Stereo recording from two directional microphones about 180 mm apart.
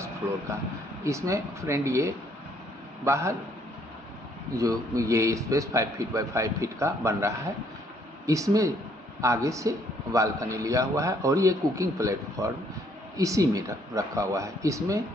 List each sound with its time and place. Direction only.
0.2 s a man's voice: 10° right (ahead or behind)
4.6 s a man's voice: 20° right (ahead or behind)